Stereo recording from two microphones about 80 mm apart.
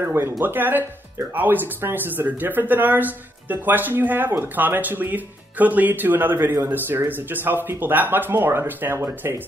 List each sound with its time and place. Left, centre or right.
0.0 s speech: right